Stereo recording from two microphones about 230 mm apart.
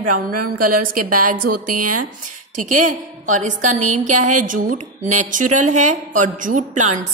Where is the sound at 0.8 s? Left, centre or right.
Right.